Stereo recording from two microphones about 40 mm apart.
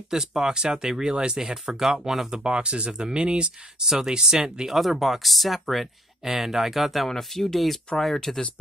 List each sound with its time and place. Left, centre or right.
0.1 s speech: centre
1.7 s speech: centre
2.4 s speech: right
3.8 s speech: centre
4.7 s speech: centre